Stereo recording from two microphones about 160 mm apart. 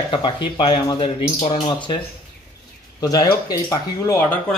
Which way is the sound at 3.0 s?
25° left (ahead or behind).